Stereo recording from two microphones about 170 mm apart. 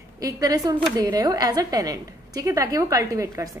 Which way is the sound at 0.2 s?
20° right (ahead or behind).